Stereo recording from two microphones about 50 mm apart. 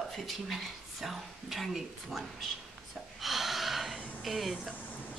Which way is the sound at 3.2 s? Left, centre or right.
Centre.